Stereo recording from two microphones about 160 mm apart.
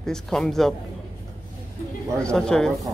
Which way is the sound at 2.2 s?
5° left (ahead or behind).